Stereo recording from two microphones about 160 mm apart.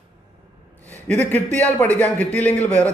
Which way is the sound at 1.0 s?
10° left (ahead or behind).